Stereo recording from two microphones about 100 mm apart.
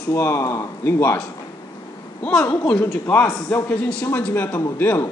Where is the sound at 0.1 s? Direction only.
25° left (ahead or behind).